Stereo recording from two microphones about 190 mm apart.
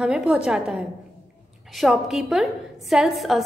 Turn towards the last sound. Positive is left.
turn(degrees=0)  # may be behind; listen again after turning